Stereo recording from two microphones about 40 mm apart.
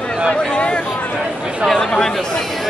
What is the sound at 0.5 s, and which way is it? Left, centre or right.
Speech, left.